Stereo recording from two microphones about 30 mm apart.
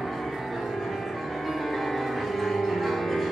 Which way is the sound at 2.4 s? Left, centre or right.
Centre.